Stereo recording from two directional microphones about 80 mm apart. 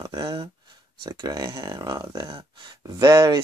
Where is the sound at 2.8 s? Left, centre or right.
Right.